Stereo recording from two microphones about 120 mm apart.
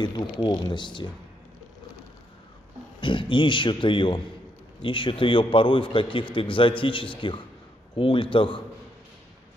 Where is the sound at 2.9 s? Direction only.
45° left (ahead or behind).